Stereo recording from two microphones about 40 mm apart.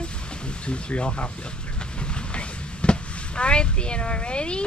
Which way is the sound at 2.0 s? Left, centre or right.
Left.